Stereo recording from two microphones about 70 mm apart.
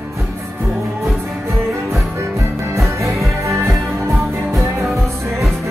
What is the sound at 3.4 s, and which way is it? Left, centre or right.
Music, right.